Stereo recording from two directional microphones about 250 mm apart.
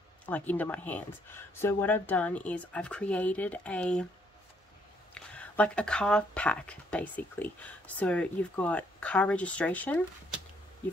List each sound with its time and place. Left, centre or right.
0.3 s speech: centre
5.1 s speech: centre